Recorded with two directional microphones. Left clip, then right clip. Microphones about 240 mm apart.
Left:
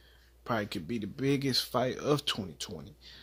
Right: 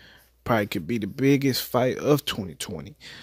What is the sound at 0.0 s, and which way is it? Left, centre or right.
Speech, right.